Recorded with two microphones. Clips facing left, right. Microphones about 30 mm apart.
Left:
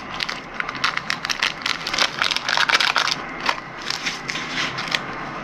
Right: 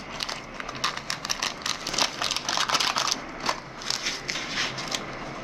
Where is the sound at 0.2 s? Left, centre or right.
Left.